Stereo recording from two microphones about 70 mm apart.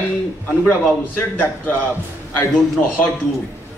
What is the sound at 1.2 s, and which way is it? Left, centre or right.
A man's voice, left.